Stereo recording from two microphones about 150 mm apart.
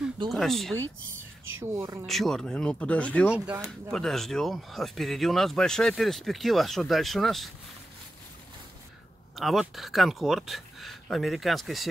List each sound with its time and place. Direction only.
0.3 s speech: centre (ahead or behind)
1.6 s a woman's voice: 15° right (ahead or behind)
2.0 s speech: centre (ahead or behind)
3.3 s a woman's voice: 10° right (ahead or behind)
3.9 s speech: 5° left (ahead or behind)
9.3 s speech: centre (ahead or behind)